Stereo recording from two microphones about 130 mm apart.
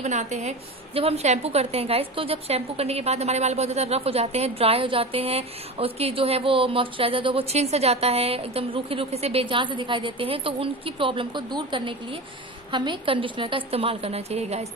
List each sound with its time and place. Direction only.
0.0 s a woman's voice: 65° right (ahead or behind)